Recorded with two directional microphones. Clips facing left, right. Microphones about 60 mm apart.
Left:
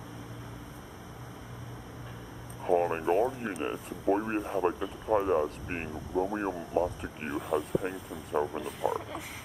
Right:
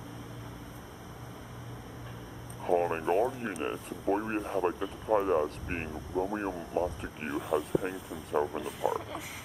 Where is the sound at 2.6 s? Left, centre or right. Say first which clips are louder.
Left 1 dB; centre.